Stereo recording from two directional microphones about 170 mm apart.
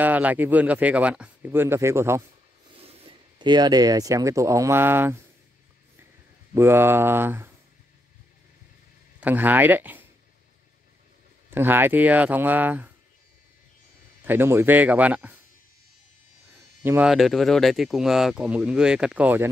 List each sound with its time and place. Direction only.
0.0 s speech: 10° right (ahead or behind)
2.8 s speech: 35° right (ahead or behind); by 5.1 s 10° right (ahead or behind)
6.5 s speech: 15° right (ahead or behind)
9.2 s speech: 10° right (ahead or behind)
11.5 s speech: 10° right (ahead or behind)
14.2 s speech: 15° right (ahead or behind)
16.8 s speech: 10° right (ahead or behind)
17.1 s speech: centre (ahead or behind)